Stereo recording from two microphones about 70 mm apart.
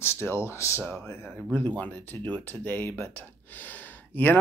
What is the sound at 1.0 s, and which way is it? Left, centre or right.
Speech, left.